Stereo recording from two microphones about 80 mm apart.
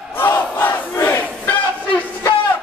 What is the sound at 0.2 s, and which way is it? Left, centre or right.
Crowd, left.